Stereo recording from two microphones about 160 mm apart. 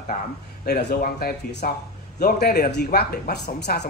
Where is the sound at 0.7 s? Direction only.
90° left.